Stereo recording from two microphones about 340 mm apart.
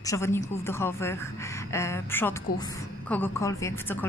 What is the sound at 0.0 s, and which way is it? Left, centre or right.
A woman's voice, centre.